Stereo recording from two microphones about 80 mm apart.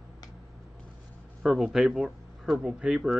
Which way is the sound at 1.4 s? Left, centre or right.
Centre.